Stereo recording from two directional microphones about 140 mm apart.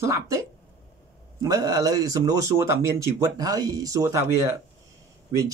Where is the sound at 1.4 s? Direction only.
25° right (ahead or behind).